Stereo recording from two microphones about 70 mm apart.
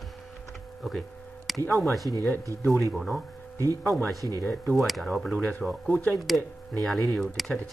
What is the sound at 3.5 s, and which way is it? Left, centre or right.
Speech, right.